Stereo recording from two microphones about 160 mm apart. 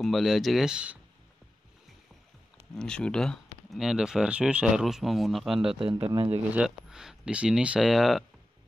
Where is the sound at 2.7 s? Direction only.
5° left (ahead or behind).